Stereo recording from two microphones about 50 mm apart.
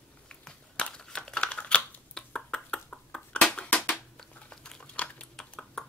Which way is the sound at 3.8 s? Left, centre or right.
Centre.